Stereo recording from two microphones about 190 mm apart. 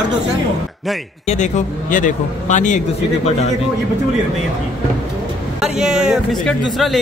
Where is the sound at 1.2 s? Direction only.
40° left (ahead or behind).